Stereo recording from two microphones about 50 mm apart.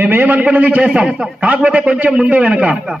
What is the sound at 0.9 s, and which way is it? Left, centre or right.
A man's voice, centre.